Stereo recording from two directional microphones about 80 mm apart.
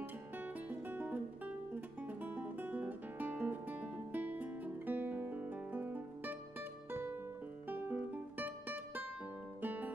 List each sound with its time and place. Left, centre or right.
0.0 s music: right
7.6 s music: right